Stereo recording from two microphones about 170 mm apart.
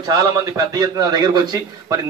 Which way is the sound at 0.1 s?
20° right (ahead or behind).